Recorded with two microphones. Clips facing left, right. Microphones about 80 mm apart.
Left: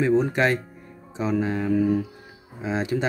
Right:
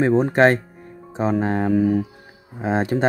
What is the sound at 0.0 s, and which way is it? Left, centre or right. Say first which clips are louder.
Speech: right 5 dB; right.